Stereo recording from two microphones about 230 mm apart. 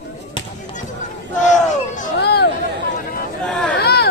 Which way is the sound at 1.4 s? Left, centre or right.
Left.